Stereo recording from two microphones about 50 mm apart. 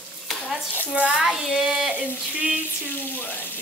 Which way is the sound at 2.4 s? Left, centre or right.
Right.